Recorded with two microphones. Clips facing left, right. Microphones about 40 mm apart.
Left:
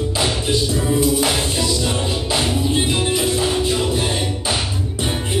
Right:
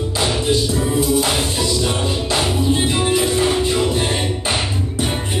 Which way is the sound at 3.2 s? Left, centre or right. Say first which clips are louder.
Right 2 dB; right.